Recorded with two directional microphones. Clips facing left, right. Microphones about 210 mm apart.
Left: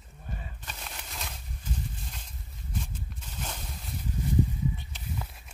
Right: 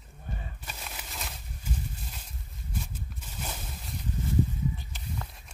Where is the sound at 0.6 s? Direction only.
5° right (ahead or behind).